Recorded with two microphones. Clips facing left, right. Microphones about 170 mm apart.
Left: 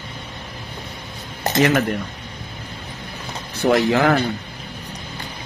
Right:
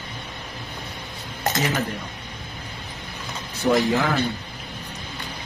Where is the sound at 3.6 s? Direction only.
75° left (ahead or behind).